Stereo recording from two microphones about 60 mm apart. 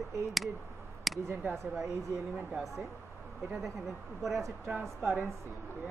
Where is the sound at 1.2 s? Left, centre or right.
Right.